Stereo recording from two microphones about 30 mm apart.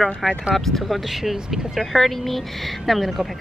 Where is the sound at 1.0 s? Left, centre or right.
Centre.